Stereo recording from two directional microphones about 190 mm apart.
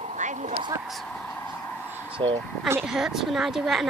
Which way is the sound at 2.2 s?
25° right (ahead or behind).